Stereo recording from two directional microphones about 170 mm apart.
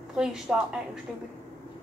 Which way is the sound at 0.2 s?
5° right (ahead or behind).